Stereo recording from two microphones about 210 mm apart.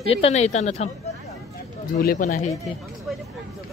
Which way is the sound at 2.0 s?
40° left (ahead or behind).